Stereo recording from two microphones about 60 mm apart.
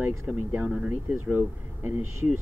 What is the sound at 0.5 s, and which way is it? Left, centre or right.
Speech, centre.